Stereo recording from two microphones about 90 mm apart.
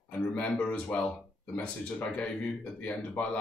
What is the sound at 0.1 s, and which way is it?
Speech, 15° left (ahead or behind).